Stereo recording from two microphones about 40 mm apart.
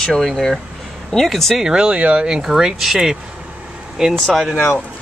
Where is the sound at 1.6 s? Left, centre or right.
Right.